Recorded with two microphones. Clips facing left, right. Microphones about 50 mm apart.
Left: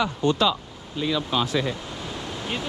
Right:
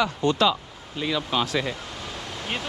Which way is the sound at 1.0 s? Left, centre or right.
Right.